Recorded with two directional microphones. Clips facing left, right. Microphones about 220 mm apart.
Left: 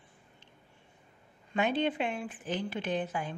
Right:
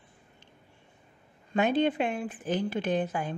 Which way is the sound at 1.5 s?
45° right (ahead or behind).